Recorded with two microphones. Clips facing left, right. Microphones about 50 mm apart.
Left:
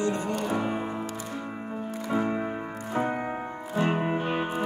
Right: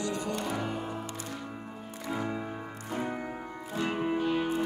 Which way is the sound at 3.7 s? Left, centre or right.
Left.